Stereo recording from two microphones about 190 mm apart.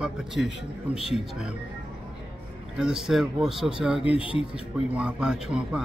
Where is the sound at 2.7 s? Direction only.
5° right (ahead or behind).